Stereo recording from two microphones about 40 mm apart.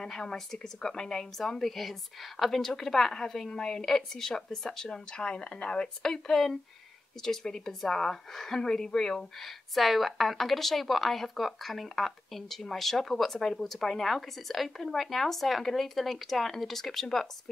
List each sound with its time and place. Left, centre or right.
0.0 s a woman's voice: centre
9.8 s speech: centre